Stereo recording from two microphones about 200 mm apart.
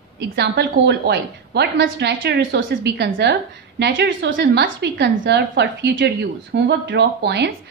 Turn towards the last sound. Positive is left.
turn(degrees=-60)  # may be behind; listen again after turning